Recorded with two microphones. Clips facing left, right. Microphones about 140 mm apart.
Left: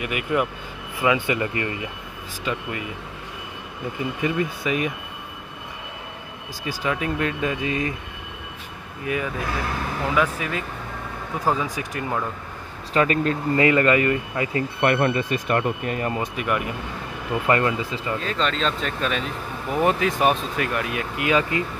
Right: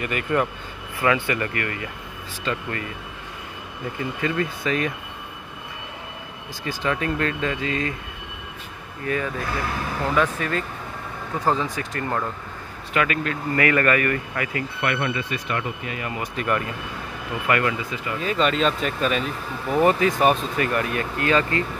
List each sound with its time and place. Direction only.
0.0 s speech: 10° left (ahead or behind)
4.0 s speech: 15° left (ahead or behind)
6.6 s speech: 10° left (ahead or behind)
9.0 s speech: 10° left (ahead or behind)
12.9 s speech: 35° left (ahead or behind)
13.6 s speech: 20° left (ahead or behind)
14.8 s speech: 45° left (ahead or behind)
16.3 s speech: 10° left (ahead or behind)
17.5 s speech: 25° left (ahead or behind)
18.2 s speech: 5° right (ahead or behind); by 21.6 s 10° left (ahead or behind)